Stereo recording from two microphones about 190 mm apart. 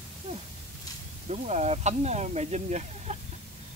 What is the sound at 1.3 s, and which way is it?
Speech, 35° right (ahead or behind).